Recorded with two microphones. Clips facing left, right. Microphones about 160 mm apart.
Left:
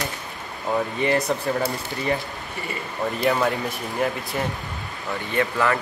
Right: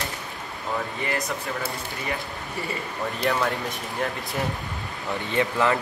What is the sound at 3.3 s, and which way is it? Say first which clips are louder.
Speech: left 3 dB; 5° left (ahead or behind).